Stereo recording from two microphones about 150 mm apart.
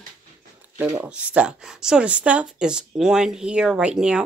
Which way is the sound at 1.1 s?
10° right (ahead or behind).